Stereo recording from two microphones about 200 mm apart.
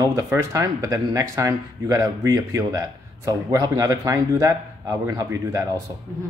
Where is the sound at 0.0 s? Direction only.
15° right (ahead or behind).